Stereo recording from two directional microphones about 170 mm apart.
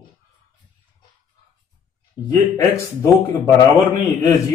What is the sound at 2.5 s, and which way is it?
Speech, 20° left (ahead or behind).